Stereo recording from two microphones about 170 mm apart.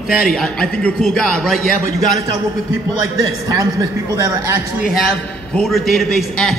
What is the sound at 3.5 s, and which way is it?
Speech, 20° right (ahead or behind).